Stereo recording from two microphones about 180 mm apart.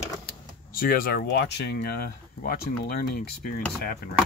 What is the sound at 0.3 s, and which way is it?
Speech, 55° left (ahead or behind).